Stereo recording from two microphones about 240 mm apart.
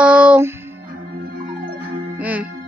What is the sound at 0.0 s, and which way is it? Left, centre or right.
Music, centre.